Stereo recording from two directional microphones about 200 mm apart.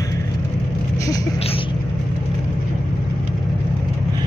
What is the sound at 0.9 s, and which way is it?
Speech, 15° left (ahead or behind).